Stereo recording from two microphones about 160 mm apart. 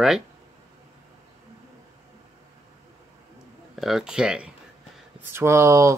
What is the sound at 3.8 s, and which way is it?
Speech, centre (ahead or behind).